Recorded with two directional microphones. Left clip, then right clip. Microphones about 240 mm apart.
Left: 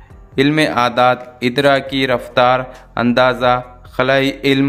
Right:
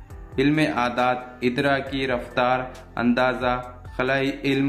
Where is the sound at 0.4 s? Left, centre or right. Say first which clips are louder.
Left 8 dB; left.